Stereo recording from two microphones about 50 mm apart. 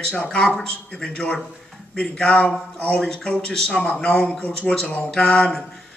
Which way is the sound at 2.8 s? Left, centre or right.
Centre.